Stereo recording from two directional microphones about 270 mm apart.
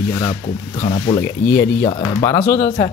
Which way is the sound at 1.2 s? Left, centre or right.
Centre.